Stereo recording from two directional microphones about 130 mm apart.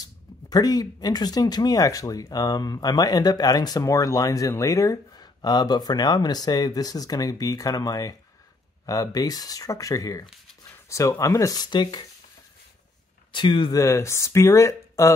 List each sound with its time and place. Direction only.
0.0 s speech: 30° left (ahead or behind)
13.3 s speech: 40° left (ahead or behind)
13.7 s speech: 25° left (ahead or behind)